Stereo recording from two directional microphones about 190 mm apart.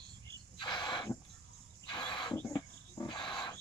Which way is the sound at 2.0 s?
25° left (ahead or behind).